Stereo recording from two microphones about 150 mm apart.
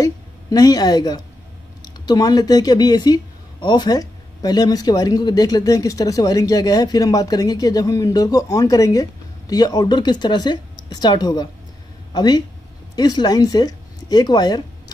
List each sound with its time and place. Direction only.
0.0 s a woman's voice: 25° left (ahead or behind)